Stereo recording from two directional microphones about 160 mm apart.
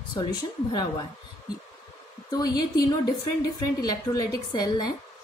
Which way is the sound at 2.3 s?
25° left (ahead or behind).